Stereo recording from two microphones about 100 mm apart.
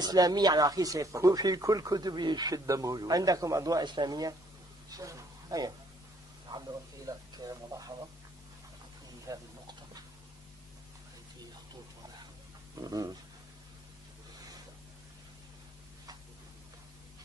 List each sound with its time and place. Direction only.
0.0 s speech: 40° right (ahead or behind)
4.9 s a sound: 35° right (ahead or behind)
7.1 s speech: 35° right (ahead or behind)
9.3 s speech: 35° right (ahead or behind)
12.8 s dog: 40° right (ahead or behind)